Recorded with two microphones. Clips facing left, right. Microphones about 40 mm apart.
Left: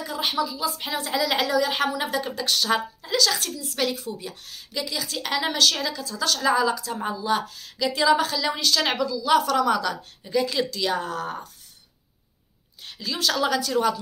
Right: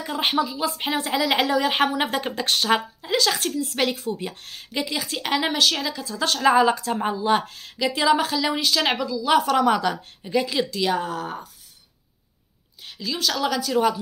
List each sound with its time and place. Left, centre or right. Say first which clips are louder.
0.0 s a woman's voice: right 3 dB; right; by 6.0 s centre
6.0 s speech: right 4 dB; right
7.8 s speech: even; centre
12.8 s speech: even; centre